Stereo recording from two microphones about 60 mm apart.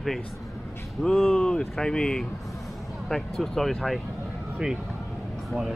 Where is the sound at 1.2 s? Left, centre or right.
Centre.